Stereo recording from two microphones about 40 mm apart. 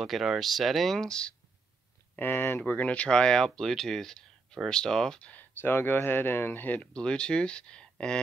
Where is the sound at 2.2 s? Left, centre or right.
Left.